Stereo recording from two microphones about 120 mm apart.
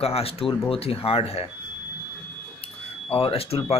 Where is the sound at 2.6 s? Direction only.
50° left (ahead or behind).